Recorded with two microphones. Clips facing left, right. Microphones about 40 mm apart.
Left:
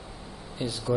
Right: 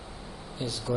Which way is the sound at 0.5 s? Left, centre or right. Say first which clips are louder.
Left 3 dB; centre.